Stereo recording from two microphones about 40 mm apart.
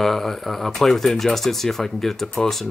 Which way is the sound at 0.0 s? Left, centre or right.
Centre.